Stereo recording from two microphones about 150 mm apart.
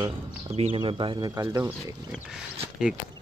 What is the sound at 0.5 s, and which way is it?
Speech, 40° right (ahead or behind).